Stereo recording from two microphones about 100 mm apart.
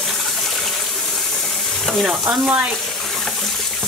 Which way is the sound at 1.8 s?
5° right (ahead or behind).